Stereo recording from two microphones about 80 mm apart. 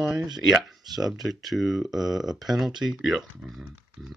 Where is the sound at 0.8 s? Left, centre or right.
Right.